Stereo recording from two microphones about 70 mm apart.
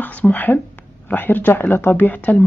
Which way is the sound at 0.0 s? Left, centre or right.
Left.